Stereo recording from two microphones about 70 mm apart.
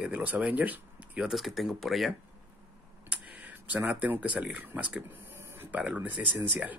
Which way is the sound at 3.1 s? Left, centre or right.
Centre.